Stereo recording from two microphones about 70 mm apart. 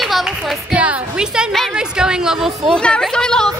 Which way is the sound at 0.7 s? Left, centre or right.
Centre.